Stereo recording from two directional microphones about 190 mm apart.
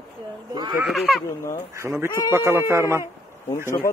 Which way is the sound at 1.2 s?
15° left (ahead or behind).